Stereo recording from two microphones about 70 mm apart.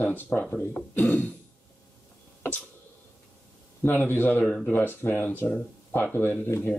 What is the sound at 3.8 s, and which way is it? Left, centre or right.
Speech, left.